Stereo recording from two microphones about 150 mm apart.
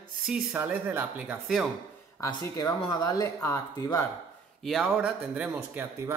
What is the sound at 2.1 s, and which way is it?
Speech, 25° left (ahead or behind).